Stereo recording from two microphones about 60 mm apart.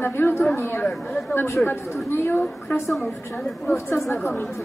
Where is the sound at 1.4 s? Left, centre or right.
Left.